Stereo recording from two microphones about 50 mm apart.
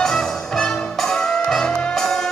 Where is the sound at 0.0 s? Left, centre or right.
Centre.